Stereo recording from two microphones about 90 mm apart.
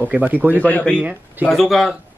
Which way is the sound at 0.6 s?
15° left (ahead or behind).